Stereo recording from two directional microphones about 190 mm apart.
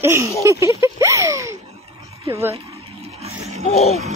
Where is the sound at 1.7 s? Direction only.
35° right (ahead or behind).